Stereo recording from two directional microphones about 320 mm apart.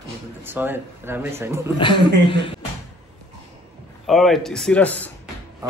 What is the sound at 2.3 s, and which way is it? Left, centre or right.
Speech, centre.